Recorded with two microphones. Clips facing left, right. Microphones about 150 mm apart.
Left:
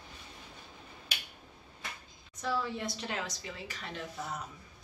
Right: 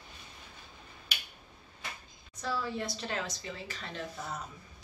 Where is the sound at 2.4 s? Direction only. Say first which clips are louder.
Left 1 dB; 15° left (ahead or behind).